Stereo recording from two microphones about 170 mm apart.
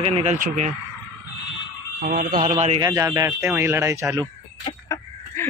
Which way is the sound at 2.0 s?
65° right (ahead or behind).